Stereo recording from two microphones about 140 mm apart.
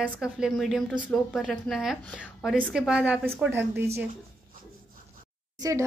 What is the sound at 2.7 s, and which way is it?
Speech, 5° right (ahead or behind).